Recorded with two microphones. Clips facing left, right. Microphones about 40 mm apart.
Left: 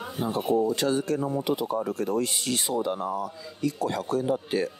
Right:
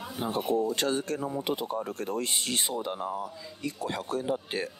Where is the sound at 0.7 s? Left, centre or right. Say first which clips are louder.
Left 4 dB; right.